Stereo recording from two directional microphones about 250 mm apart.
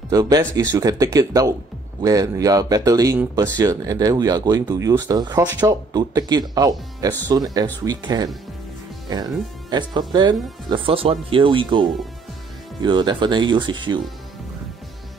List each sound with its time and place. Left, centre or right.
0.1 s speech: centre
9.7 s speech: centre